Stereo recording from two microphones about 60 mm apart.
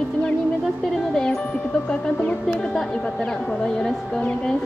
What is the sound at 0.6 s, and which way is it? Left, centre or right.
Speech, centre.